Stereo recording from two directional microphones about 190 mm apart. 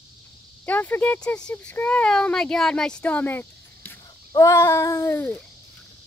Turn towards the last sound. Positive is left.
turn(degrees=10)  # may be behind; listen again after turning